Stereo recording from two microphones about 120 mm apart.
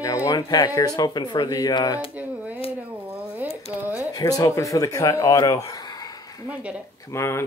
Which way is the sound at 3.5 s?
25° right (ahead or behind).